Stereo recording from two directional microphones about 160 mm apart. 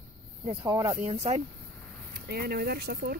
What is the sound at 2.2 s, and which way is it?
Speech, 75° right (ahead or behind).